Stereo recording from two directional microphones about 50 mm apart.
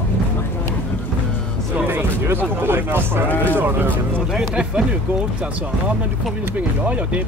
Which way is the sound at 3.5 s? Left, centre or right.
Right.